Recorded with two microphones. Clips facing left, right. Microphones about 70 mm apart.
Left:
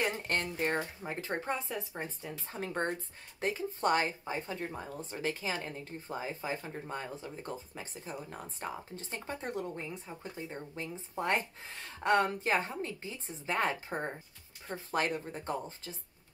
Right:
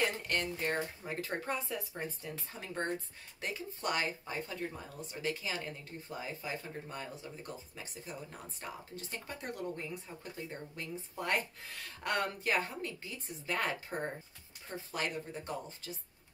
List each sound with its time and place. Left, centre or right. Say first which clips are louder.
0.3 s speech: left 2 dB; left
2.5 s speech: left 3 dB; left
14.7 s speech: left 5 dB; left